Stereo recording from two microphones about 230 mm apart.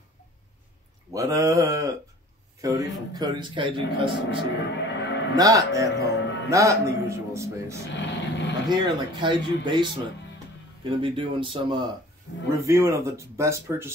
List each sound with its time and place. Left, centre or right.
1.1 s a man's voice: centre
4.8 s cattle: left
5.3 s speech: centre
6.2 s music: left
6.5 s speech: centre
7.7 s speech: left
8.6 s a man's voice: centre